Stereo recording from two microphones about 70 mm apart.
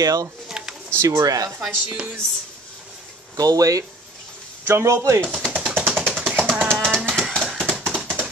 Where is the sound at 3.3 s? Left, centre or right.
Right.